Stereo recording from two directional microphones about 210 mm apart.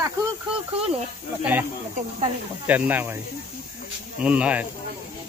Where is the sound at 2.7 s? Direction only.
10° right (ahead or behind).